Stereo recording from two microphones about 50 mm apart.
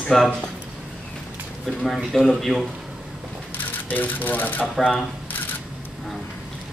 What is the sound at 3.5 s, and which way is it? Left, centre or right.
Speech, left.